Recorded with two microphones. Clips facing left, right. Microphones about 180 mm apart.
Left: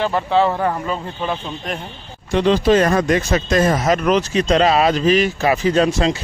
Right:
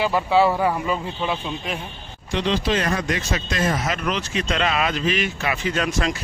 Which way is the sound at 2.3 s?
50° left (ahead or behind).